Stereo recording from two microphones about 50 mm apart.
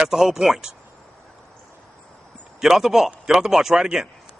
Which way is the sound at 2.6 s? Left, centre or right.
Centre.